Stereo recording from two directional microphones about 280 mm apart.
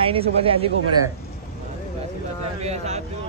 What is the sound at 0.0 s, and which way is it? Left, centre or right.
Speech, centre.